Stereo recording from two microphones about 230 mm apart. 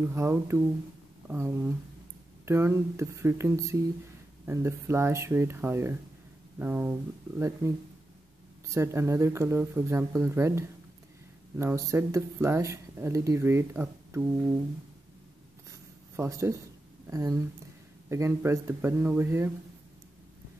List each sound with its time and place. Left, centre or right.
0.0 s speech: centre
16.2 s speech: centre